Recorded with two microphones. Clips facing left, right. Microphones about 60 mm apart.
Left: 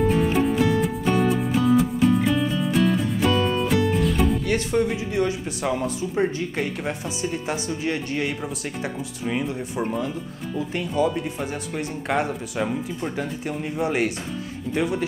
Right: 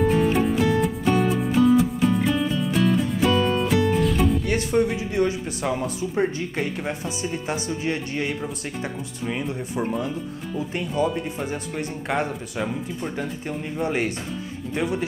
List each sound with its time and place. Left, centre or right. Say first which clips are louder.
0.1 s music: even; centre
4.6 s speech: right 1 dB; centre